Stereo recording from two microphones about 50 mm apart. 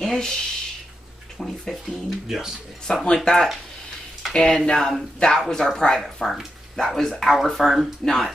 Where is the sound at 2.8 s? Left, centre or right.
Centre.